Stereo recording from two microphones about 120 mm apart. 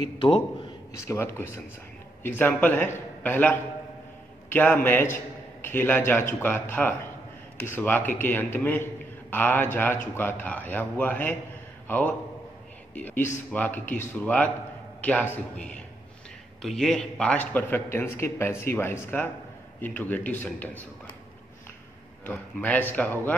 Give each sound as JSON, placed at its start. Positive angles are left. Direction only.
{"t": 0.0, "sound": "a man's voice", "side_deg": 40}
{"t": 1.0, "sound": "a man's voice", "side_deg": 25}
{"t": 22.2, "sound": "a man's voice", "side_deg": 15}